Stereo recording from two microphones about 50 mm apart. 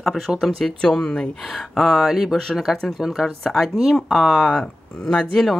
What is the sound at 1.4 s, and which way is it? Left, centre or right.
Speech, centre.